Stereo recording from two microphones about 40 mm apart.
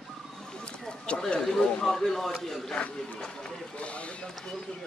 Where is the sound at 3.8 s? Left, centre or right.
Left.